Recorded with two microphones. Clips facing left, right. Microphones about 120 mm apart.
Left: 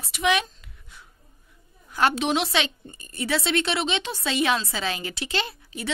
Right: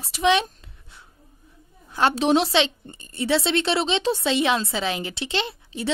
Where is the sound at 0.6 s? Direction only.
25° right (ahead or behind).